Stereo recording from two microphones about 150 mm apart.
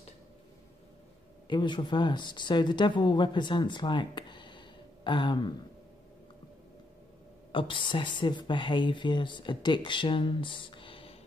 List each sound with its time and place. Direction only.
1.5 s speech: 30° left (ahead or behind)
7.5 s speech: 35° left (ahead or behind)